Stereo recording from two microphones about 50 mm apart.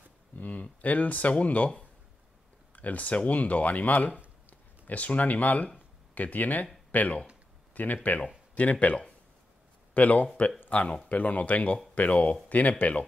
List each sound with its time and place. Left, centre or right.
0.4 s speech: left